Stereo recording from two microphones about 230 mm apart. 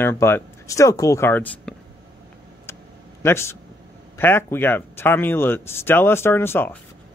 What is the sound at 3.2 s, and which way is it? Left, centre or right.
A man's voice, centre.